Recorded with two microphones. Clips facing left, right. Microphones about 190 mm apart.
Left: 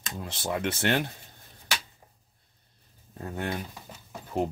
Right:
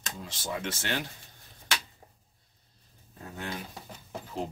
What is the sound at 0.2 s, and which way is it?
Speech, 60° left (ahead or behind).